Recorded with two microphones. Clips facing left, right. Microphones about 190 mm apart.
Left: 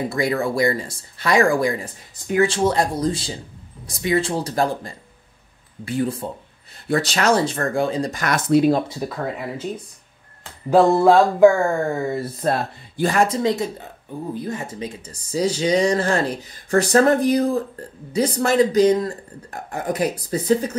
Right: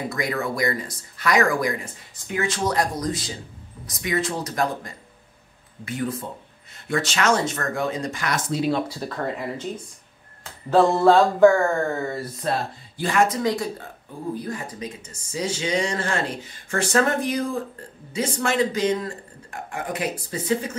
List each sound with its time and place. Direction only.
0.1 s speech: 30° left (ahead or behind)
8.5 s speech: 60° left (ahead or behind)
9.1 s speech: 5° left (ahead or behind)
10.7 s speech: 10° left (ahead or behind)
12.4 s speech: 45° left (ahead or behind); by 14.9 s 25° left (ahead or behind)
15.3 s speech: 35° left (ahead or behind)